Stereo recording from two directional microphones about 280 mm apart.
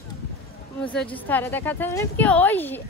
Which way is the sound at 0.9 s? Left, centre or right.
Centre.